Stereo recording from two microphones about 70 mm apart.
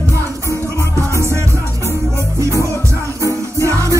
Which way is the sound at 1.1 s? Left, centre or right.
Right.